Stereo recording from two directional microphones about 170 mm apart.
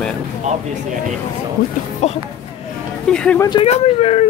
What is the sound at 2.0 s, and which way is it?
Speech, 45° left (ahead or behind).